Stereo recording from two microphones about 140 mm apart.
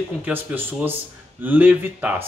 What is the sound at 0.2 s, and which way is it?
Speech, 15° right (ahead or behind).